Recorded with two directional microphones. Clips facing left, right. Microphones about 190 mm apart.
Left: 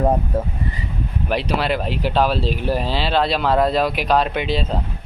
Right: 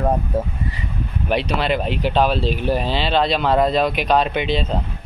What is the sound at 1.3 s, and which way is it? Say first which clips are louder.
Speech: right 1 dB; 5° left (ahead or behind).